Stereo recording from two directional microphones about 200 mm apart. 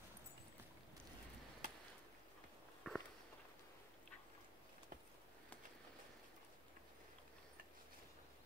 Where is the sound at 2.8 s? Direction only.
5° left (ahead or behind).